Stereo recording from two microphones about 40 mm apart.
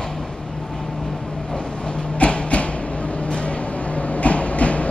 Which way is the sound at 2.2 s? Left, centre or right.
Left.